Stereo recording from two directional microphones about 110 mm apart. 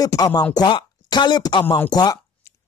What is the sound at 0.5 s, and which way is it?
Speech, 40° left (ahead or behind).